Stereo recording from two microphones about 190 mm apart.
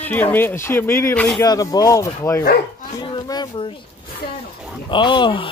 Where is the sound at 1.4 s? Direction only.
20° left (ahead or behind).